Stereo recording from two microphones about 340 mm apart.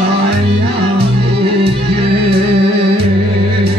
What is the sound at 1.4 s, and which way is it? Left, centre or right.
Music, centre.